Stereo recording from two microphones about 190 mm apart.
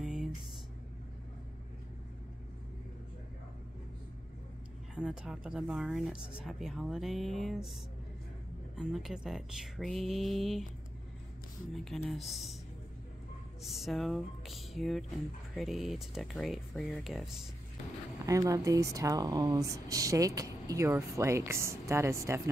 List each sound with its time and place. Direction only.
0.0 s a sound: 5° right (ahead or behind)
4.9 s speech: 5° right (ahead or behind)
8.7 s speech: centre (ahead or behind)
11.7 s speech: centre (ahead or behind)
13.6 s speech: centre (ahead or behind)
18.2 s speech: 15° right (ahead or behind)